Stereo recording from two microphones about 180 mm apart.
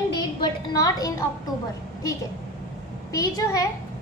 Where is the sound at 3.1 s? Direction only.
20° left (ahead or behind).